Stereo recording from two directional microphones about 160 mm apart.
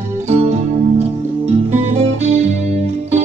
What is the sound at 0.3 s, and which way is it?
Music, 45° right (ahead or behind).